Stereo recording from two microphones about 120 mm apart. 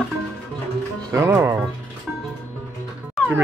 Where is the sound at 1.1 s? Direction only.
20° right (ahead or behind).